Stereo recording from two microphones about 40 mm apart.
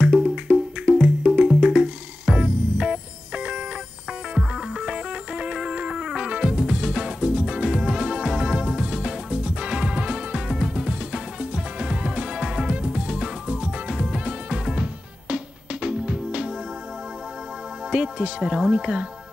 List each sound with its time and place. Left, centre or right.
0.5 s music: right
17.9 s speech: right